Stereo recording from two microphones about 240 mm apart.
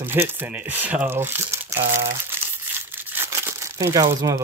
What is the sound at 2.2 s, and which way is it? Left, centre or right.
Crumpling, centre.